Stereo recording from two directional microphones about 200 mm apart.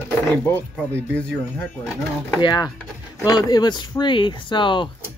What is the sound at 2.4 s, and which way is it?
Speech, 20° left (ahead or behind).